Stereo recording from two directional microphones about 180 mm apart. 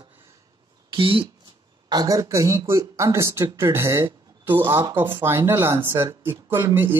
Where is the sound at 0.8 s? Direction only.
30° right (ahead or behind).